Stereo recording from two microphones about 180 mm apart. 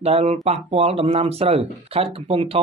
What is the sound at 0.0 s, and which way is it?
Speech, 35° right (ahead or behind).